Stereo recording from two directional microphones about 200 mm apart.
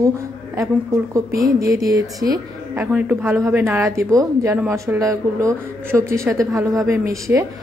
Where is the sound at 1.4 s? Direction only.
15° right (ahead or behind).